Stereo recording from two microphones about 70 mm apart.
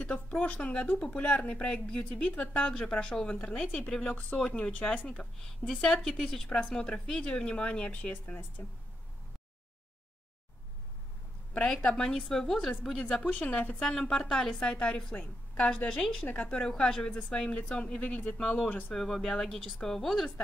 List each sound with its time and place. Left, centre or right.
0.1 s speech: left
5.0 s speech: centre
8.6 s speech: left
11.5 s speech: centre
13.2 s speech: left
13.7 s speech: centre
18.9 s speech: centre